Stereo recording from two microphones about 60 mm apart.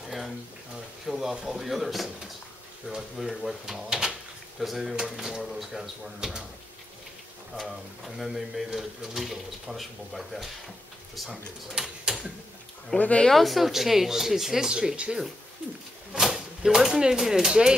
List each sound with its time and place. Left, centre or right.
1.0 s speech: centre
7.6 s speech: centre
12.9 s speech: centre
13.3 s speech: centre